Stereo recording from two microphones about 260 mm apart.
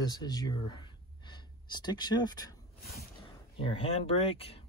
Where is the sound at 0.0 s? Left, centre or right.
Centre.